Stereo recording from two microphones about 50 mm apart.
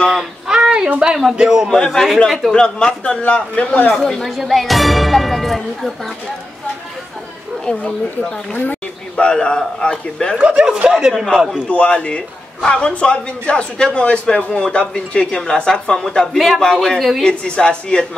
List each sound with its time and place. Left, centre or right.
0.1 s speech: centre
0.6 s a sound: centre
0.9 s a man's voice: centre
2.1 s speech: centre
2.5 s a man's voice: centre
3.9 s speech: centre
7.6 s a man's voice: left
10.4 s speech: centre
10.9 s a man's voice: centre
11.7 s a man's voice: left
16.3 s speech: centre
16.6 s a man's voice: centre